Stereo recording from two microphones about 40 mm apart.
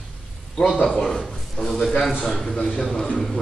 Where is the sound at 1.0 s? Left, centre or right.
Centre.